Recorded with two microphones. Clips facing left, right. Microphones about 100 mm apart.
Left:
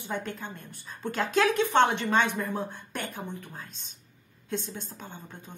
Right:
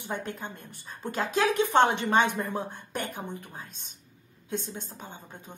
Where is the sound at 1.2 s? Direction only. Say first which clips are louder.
Left 2 dB; 5° right (ahead or behind).